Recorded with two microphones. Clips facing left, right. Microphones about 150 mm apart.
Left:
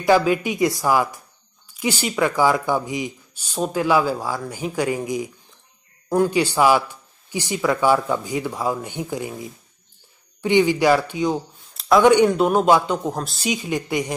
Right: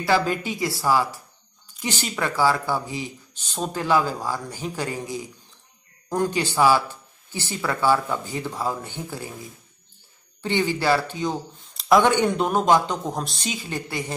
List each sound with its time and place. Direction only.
0.0 s speech: 15° left (ahead or behind)
10.4 s speech: 15° left (ahead or behind)
11.7 s a sound: centre (ahead or behind)
12.3 s speech: 5° left (ahead or behind)
13.5 s speech: 15° left (ahead or behind)